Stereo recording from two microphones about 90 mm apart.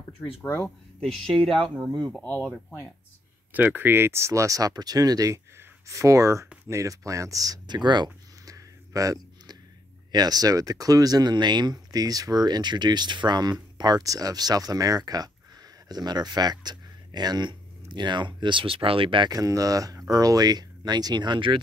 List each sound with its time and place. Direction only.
1.0 s speech: 10° left (ahead or behind)
3.5 s speech: 20° right (ahead or behind); by 8.1 s 55° right (ahead or behind)
8.5 s a sound: 40° right (ahead or behind)
10.1 s speech: 45° right (ahead or behind); by 19.3 s 65° right (ahead or behind)
19.3 s speech: 40° right (ahead or behind); by 21.5 s 60° right (ahead or behind)